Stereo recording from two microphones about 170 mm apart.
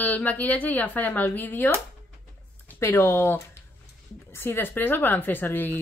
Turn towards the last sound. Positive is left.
turn(degrees=10)  # may be behind; listen again after turning